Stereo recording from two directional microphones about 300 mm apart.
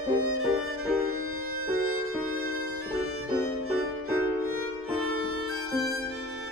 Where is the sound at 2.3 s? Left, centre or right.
Right.